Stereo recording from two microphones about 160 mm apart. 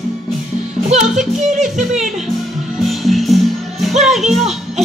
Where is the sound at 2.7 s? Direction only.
Centre (ahead or behind).